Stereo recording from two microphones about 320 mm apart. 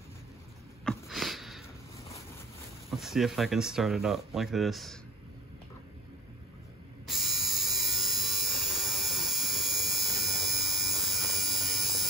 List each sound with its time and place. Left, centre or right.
0.8 s sniff: centre
2.9 s speech: centre
7.1 s electric shaver: centre